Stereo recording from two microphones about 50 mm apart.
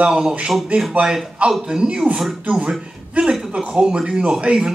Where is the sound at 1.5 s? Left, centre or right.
Centre.